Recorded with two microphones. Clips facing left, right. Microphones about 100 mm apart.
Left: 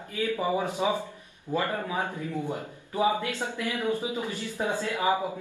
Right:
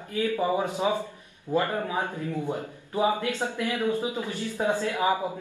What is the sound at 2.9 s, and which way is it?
A man's voice, 15° right (ahead or behind).